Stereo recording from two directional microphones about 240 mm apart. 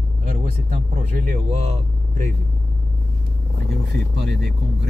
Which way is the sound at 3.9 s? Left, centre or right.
Right.